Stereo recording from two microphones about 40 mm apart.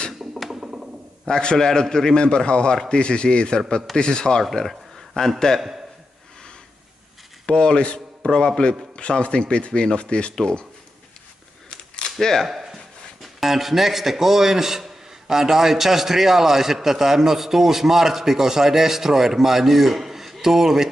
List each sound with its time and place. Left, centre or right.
0.5 s a sound: centre
1.2 s a man's voice: left
4.4 s speech: centre
7.4 s a man's voice: left
8.3 s a man's voice: centre
11.7 s a sound: left
12.2 s a man's voice: centre
12.4 s a sound: centre
12.7 s speech: centre